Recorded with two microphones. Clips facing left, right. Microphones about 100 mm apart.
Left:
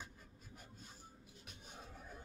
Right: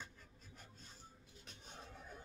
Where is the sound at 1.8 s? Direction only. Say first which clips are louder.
Even; 10° left (ahead or behind).